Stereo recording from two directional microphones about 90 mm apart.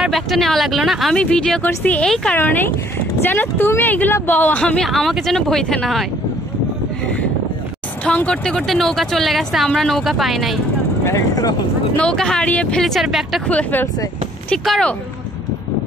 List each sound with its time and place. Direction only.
0.0 s a woman's voice: centre (ahead or behind)
1.1 s speech: 10° left (ahead or behind)
2.3 s speech: 20° left (ahead or behind)
4.8 s a woman's voice: centre (ahead or behind)
8.0 s a woman's voice: 15° left (ahead or behind)
11.1 s speech: 40° left (ahead or behind)
12.0 s speech: 10° left (ahead or behind)
12.8 s a woman's voice: centre (ahead or behind)
13.5 s speech: 15° left (ahead or behind)
14.6 s a woman's voice: centre (ahead or behind)